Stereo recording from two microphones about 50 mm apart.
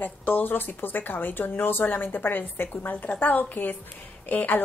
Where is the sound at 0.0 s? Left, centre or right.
Left.